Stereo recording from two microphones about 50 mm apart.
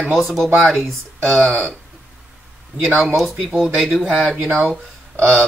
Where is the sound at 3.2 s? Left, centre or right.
Centre.